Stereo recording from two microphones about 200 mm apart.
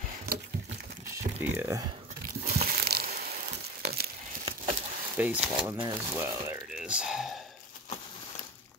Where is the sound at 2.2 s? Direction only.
45° right (ahead or behind).